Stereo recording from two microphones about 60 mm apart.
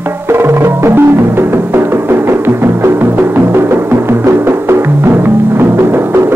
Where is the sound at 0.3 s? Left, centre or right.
Right.